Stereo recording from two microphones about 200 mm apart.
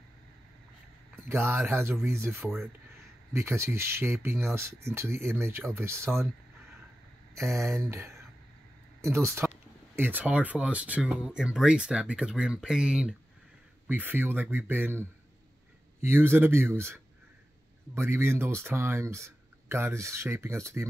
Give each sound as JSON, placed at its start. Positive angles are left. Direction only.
{"t": 1.3, "sound": "speech", "side_deg": -10}
{"t": 7.3, "sound": "speech", "side_deg": -15}